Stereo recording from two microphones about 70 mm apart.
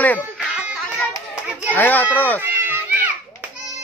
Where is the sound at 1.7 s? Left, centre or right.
Left.